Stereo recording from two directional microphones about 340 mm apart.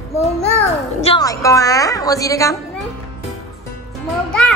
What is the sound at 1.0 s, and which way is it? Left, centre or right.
A woman's voice, centre.